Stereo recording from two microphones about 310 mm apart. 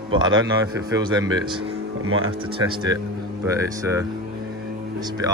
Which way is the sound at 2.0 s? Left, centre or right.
Right.